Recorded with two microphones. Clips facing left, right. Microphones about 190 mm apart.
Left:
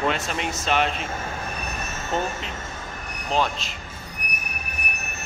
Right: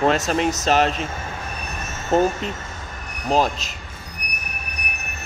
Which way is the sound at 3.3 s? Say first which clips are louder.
Right 4 dB; 40° right (ahead or behind).